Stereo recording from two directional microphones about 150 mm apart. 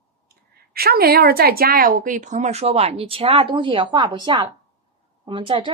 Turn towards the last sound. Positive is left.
turn(degrees=-35)  # may be behind; listen again after turning